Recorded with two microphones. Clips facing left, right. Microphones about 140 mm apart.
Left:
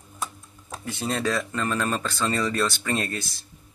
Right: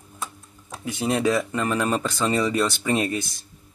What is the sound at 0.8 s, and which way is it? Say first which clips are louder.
Speech: right 5 dB; 15° right (ahead or behind).